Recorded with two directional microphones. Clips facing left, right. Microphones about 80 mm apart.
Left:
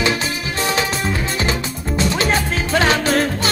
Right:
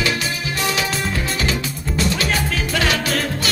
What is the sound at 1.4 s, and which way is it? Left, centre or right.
Music, left.